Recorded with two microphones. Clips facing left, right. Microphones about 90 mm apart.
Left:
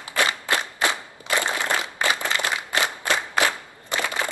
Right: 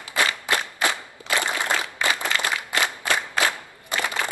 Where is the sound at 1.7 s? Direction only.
20° left (ahead or behind).